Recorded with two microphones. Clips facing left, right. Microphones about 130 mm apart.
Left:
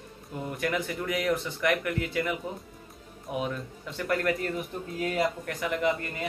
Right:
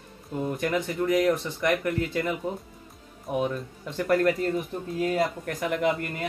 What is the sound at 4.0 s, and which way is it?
Speech, 35° right (ahead or behind).